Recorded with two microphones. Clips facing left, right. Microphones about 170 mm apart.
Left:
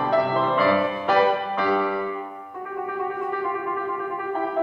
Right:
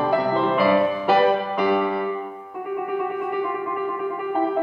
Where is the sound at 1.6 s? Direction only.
15° right (ahead or behind).